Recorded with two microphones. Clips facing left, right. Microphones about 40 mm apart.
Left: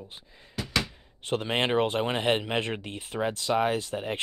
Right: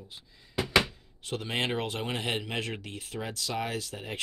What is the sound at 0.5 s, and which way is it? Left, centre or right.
Thunk, right.